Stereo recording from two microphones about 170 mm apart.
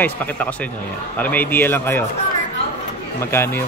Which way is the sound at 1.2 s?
10° left (ahead or behind).